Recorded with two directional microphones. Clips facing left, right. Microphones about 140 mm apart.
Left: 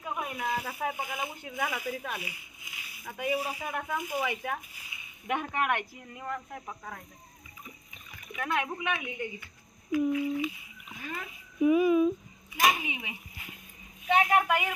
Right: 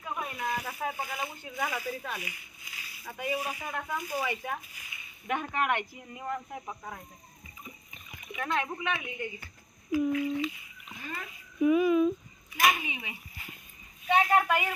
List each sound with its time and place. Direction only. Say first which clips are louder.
0.0 s a sound: left 1 dB; 5° left (ahead or behind)
1.2 s speech: left 1 dB; 15° left (ahead or behind)
1.9 s speech: left 1 dB; 5° left (ahead or behind)
2.1 s speech: left 1 dB; 20° left (ahead or behind)
3.2 s speech: left 2 dB; 10° left (ahead or behind)
4.2 s speech: left 1 dB; centre (ahead or behind)
4.9 s speech: left 1 dB; 10° left (ahead or behind)
6.0 s speech: right 1 dB; 10° right (ahead or behind)
8.2 s speech: even; centre (ahead or behind)
9.4 s a sound: right 1 dB; 30° right (ahead or behind)
10.1 s speech: even; 15° left (ahead or behind)
10.9 s speech: left 1 dB; 5° left (ahead or behind)
14.2 s speech: even; 10° left (ahead or behind)